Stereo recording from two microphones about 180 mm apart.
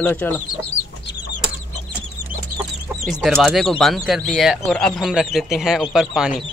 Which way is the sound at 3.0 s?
Centre (ahead or behind).